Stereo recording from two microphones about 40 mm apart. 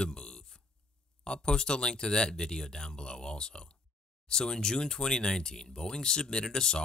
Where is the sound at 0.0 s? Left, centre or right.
Left.